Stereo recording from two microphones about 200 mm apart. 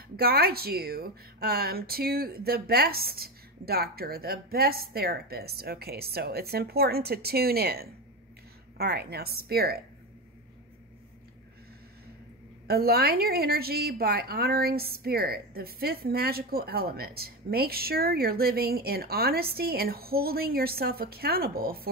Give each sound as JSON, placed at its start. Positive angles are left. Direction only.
{"t": 0.2, "sound": "a woman's voice", "side_deg": -50}
{"t": 12.6, "sound": "a woman's voice", "side_deg": -50}